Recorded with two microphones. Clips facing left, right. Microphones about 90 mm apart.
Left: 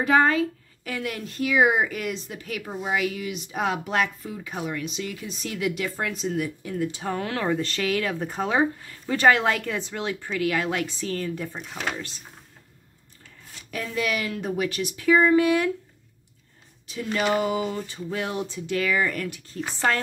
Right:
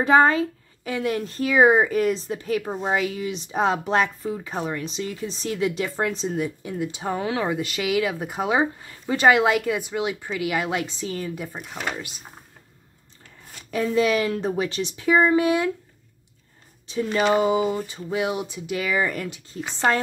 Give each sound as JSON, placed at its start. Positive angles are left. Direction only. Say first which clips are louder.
{"t": 0.0, "sound": "speech", "louder": "right 3 dB", "side_deg": -30}
{"t": 13.7, "sound": "speech", "louder": "right 7 dB", "side_deg": -25}
{"t": 16.8, "sound": "speech", "louder": "right 4 dB", "side_deg": -25}